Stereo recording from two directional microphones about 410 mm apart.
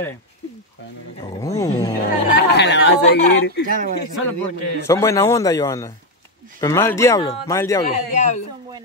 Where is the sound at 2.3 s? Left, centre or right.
Left.